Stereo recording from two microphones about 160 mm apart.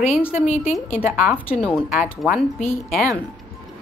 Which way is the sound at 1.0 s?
10° right (ahead or behind).